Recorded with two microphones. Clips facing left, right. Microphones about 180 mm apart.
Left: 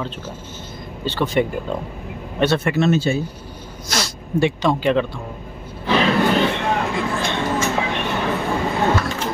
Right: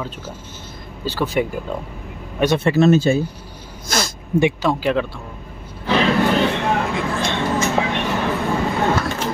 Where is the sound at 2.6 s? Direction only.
40° right (ahead or behind).